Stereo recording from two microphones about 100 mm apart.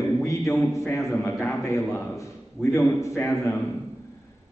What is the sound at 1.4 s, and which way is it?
A man's voice, 25° left (ahead or behind).